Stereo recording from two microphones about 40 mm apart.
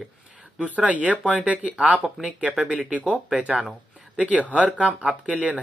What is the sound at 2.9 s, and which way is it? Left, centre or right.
Speech, right.